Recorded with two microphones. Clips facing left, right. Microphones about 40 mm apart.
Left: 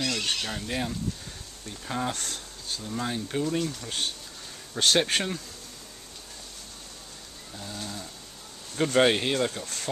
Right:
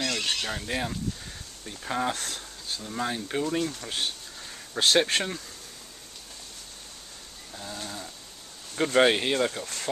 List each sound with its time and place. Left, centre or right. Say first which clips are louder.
0.0 s fowl: even; centre
1.7 s speech: right 2 dB; centre
7.5 s speech: even; centre